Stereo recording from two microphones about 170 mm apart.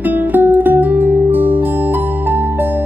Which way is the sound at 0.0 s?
10° right (ahead or behind).